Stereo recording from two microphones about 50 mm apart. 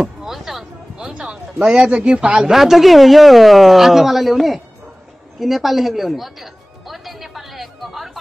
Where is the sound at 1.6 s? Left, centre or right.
Centre.